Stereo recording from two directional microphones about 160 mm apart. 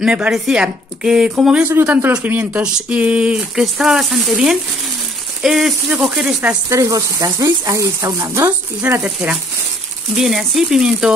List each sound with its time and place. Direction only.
0.0 s speech: 5° right (ahead or behind)
6.7 s speech: 20° right (ahead or behind); by 11.1 s 5° right (ahead or behind)